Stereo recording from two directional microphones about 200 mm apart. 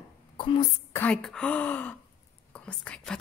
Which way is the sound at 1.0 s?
5° left (ahead or behind).